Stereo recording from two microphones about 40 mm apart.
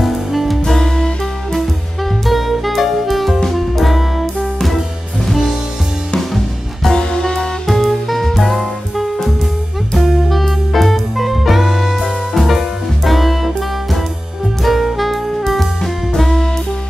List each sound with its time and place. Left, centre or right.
0.0 s music: centre
0.7 s music: centre
2.2 s music: centre
6.9 s music: centre
7.6 s music: centre
14.6 s saxophone: centre